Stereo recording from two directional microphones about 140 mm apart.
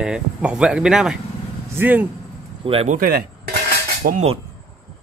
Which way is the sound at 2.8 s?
90° right.